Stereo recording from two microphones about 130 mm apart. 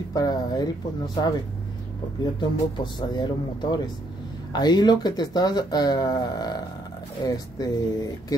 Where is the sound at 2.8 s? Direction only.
35° left (ahead or behind).